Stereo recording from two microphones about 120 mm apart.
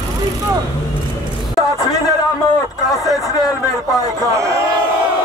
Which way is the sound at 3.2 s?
30° left (ahead or behind).